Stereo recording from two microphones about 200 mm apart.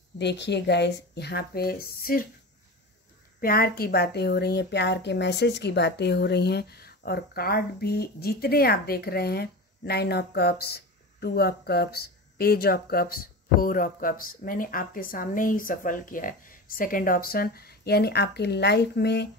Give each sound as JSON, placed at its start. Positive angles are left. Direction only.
{"t": 0.2, "sound": "speech", "side_deg": 60}
{"t": 3.3, "sound": "a woman's voice", "side_deg": 45}